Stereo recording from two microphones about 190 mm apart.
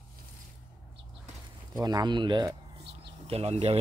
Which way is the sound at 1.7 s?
20° right (ahead or behind).